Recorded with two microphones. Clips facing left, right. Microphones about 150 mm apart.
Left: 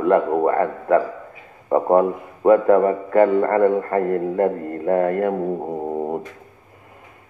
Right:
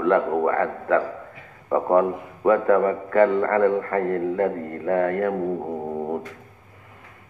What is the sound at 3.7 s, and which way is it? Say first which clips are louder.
A man's voice: left 3 dB; 30° left (ahead or behind).